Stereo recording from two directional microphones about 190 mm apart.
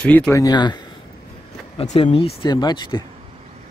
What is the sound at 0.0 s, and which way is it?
Speech, 5° left (ahead or behind).